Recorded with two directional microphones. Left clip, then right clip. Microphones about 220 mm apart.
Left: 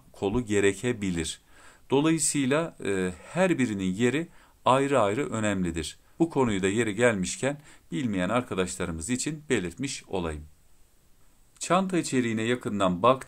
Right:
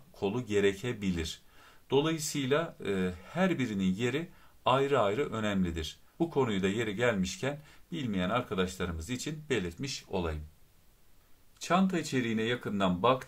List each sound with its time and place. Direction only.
0.1 s speech: 45° left (ahead or behind)
11.5 s speech: 50° left (ahead or behind)